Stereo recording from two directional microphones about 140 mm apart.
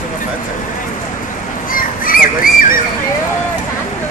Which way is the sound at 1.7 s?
90° left.